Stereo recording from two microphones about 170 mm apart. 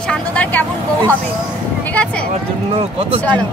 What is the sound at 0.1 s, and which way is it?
Vehicle, 10° left (ahead or behind).